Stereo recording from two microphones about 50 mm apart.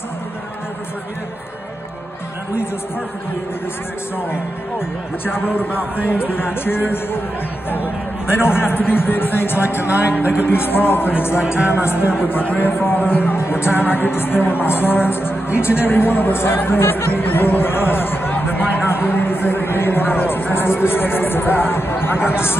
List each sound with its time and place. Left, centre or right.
4.3 s speech: left
11.4 s music: centre
11.7 s speech: left
18.9 s speech: left